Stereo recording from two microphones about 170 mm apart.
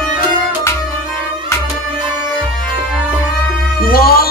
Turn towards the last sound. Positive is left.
turn(degrees=60)  # may be behind; listen again after turning